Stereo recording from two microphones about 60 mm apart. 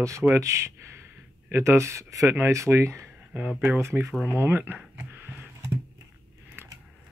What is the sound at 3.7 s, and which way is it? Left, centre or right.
Speech, right.